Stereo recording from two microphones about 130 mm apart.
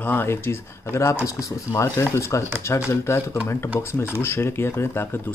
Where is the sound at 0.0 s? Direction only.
15° left (ahead or behind).